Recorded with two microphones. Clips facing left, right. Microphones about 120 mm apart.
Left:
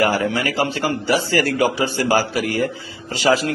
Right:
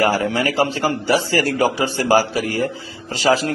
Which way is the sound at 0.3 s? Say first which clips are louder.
Right 2 dB; 30° right (ahead or behind).